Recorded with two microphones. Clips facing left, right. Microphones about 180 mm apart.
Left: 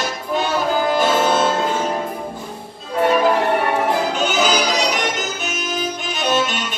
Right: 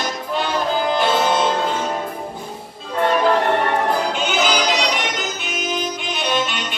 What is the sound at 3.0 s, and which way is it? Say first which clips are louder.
Music: left 1 dB; 10° left (ahead or behind).